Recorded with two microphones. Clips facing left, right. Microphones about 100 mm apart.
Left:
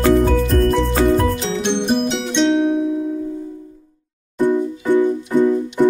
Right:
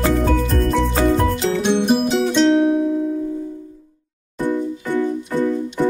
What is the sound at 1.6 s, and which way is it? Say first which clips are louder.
Music: right 1 dB; 5° right (ahead or behind).